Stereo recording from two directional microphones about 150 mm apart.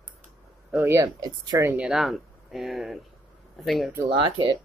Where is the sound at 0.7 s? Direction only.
15° right (ahead or behind).